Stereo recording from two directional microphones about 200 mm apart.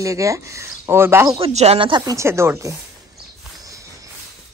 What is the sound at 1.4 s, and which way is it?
Speech, 30° right (ahead or behind).